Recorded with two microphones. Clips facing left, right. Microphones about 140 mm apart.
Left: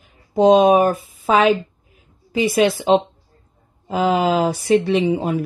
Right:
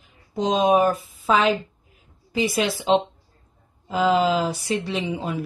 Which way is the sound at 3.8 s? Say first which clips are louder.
Left 2 dB; 60° left (ahead or behind).